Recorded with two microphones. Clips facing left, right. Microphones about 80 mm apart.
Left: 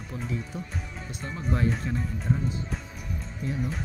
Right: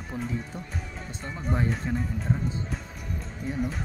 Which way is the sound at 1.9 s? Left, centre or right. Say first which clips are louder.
Right 2 dB; right.